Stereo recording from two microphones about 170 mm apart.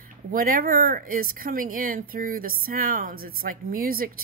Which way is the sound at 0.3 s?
55° right (ahead or behind).